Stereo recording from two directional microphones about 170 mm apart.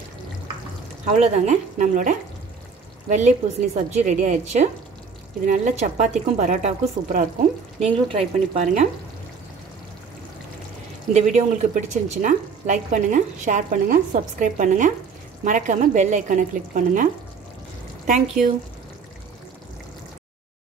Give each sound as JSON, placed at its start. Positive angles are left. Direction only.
{"t": 1.0, "sound": "a woman's voice", "side_deg": -40}
{"t": 11.1, "sound": "a woman's voice", "side_deg": -45}